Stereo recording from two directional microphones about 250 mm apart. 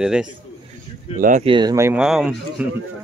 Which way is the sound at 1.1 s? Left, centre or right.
Right.